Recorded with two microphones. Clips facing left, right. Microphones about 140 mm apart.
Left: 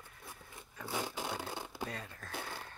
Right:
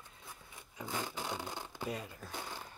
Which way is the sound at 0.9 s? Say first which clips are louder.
Left 1 dB; 10° left (ahead or behind).